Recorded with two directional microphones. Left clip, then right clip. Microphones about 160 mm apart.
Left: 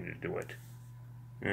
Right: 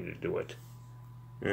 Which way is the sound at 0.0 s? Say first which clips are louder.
Right 4 dB; 30° right (ahead or behind).